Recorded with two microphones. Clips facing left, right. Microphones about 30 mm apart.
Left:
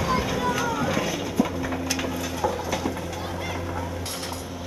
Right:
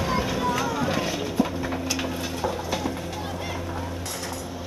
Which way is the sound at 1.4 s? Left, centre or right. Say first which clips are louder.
Left 1 dB; centre.